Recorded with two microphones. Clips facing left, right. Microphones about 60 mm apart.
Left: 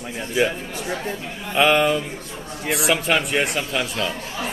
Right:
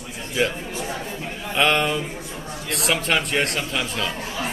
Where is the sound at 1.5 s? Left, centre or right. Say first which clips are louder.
Left 3 dB; centre.